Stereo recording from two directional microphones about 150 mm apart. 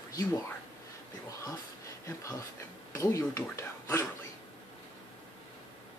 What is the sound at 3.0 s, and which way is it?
Speech, 20° left (ahead or behind).